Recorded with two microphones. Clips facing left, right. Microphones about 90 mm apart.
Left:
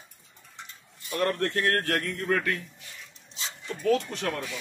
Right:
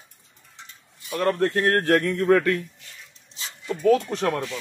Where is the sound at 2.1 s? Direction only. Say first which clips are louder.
Right 8 dB; 50° right (ahead or behind).